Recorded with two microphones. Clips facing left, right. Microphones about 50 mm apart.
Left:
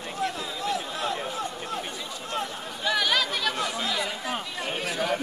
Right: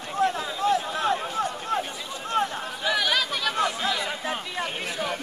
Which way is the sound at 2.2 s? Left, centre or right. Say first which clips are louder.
Right 7 dB; right.